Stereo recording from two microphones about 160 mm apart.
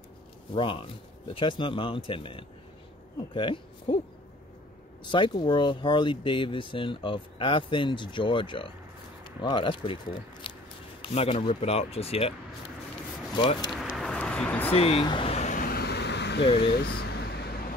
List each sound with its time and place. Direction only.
0.6 s speech: 35° left (ahead or behind)
5.0 s speech: 30° left (ahead or behind)
10.4 s a sound: 35° left (ahead or behind)
11.0 s speech: 35° left (ahead or behind)
13.4 s speech: 30° left (ahead or behind)
13.7 s vehicle: centre (ahead or behind)
14.7 s speech: 35° left (ahead or behind)
15.6 s vehicle: 80° left
16.5 s a sound: 80° left